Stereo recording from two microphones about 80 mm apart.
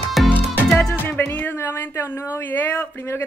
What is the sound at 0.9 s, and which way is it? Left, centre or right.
A woman's voice, left.